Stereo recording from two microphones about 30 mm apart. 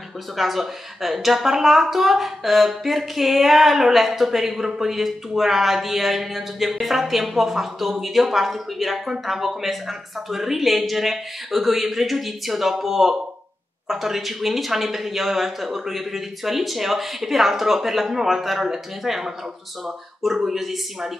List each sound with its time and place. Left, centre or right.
0.4 s speech: centre